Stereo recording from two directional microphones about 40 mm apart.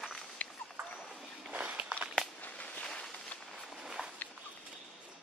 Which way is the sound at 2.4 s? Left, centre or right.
Left.